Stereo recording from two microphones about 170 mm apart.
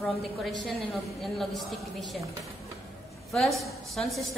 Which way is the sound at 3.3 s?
Centre (ahead or behind).